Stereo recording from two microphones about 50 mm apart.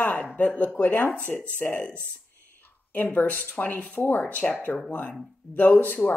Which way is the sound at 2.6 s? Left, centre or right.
Left.